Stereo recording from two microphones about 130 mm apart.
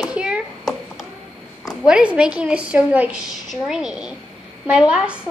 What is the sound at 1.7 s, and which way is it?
A woman's voice, 5° right (ahead or behind).